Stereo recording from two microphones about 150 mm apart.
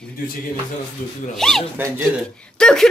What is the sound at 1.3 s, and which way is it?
A woman's voice, centre (ahead or behind).